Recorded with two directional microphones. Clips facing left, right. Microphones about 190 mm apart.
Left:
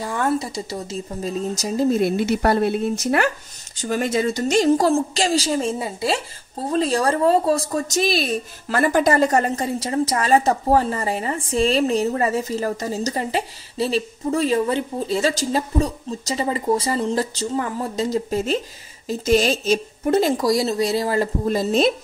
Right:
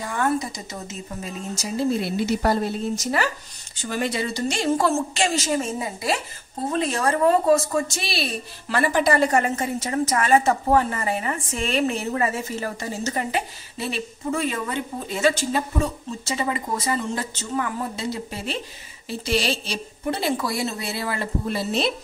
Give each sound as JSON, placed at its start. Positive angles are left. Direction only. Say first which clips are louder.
{"t": 0.0, "sound": "speech", "louder": "left 2 dB", "side_deg": 30}
{"t": 3.7, "sound": "speech", "louder": "left 5 dB", "side_deg": 40}